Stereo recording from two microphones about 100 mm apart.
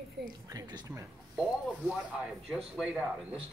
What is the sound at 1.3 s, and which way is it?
Speech, 5° right (ahead or behind).